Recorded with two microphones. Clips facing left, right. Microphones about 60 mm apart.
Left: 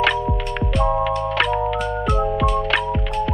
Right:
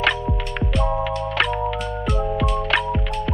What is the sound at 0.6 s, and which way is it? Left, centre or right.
Music, centre.